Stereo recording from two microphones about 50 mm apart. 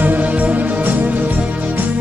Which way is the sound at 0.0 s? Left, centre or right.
Right.